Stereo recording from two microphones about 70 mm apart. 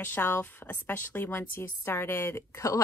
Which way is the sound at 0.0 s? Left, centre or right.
Left.